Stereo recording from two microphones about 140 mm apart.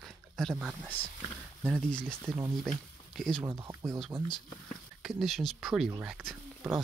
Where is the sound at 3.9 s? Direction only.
Centre (ahead or behind).